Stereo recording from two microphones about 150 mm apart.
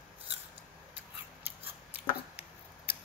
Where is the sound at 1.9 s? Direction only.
15° right (ahead or behind).